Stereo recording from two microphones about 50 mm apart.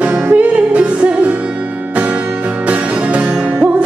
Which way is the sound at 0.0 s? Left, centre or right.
Right.